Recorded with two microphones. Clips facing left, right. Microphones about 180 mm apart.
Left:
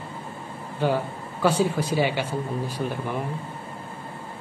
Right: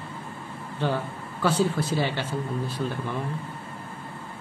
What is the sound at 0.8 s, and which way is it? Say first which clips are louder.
A man's voice: left 3 dB; 10° left (ahead or behind).